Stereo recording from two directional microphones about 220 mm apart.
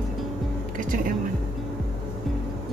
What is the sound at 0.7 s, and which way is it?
Music, 40° right (ahead or behind).